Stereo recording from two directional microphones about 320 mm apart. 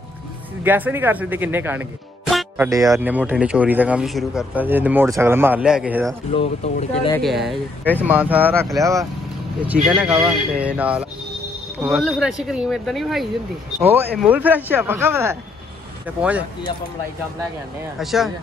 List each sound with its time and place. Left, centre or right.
0.7 s speech: centre
6.3 s speech: centre
7.2 s speech: centre
17.9 s speech: centre